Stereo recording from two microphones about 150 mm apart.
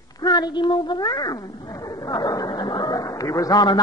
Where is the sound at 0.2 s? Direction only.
30° left (ahead or behind).